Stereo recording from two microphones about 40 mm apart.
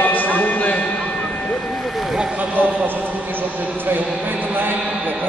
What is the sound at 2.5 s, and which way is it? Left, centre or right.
Speech, right.